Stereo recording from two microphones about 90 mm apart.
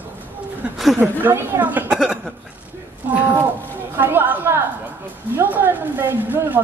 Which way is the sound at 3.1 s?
25° right (ahead or behind).